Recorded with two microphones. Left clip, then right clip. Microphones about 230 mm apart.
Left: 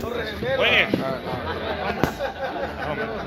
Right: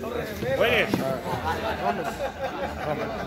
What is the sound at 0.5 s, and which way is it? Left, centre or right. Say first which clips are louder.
Speech: left 3 dB; right.